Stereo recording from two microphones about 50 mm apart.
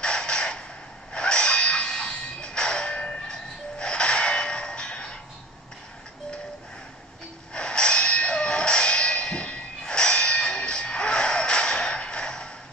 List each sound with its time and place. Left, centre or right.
0.0 s creak: centre
1.1 s music: centre
7.5 s a sound: centre